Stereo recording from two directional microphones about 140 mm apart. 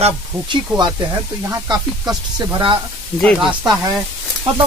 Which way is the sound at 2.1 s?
30° right (ahead or behind).